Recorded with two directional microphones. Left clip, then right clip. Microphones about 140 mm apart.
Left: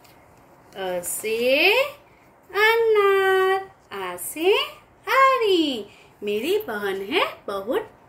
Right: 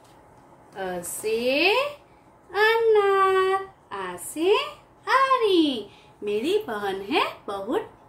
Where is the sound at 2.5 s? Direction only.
10° right (ahead or behind).